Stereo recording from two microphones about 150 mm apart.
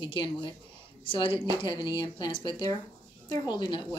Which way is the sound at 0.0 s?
30° left (ahead or behind).